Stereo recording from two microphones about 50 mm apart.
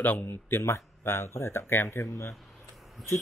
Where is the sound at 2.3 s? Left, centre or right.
Centre.